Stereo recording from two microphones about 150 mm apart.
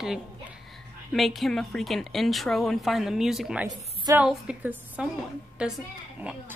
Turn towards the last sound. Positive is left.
turn(degrees=-10)  # may be behind; listen again after turning